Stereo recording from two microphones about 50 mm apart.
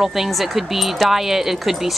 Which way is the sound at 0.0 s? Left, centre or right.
Centre.